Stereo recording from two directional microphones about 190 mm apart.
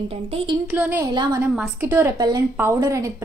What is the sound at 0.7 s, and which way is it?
A woman's voice, 10° right (ahead or behind).